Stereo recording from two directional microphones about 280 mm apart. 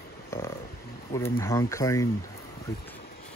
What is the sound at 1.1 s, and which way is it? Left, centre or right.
Speech, centre.